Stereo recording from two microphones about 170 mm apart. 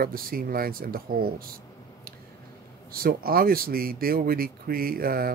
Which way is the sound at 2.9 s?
60° right (ahead or behind).